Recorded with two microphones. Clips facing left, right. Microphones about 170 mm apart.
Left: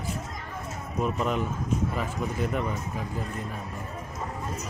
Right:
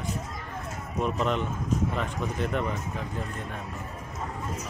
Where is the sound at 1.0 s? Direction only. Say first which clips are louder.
Even; 5° left (ahead or behind).